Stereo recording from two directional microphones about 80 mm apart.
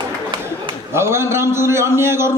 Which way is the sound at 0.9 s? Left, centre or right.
Right.